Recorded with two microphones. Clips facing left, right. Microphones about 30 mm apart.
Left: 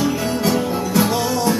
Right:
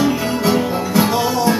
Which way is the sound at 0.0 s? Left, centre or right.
Centre.